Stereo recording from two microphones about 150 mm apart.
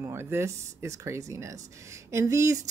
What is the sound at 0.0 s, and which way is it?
A woman's voice, 15° right (ahead or behind).